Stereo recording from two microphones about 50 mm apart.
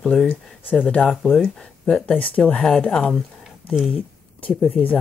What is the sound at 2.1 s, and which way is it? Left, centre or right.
Speech, left.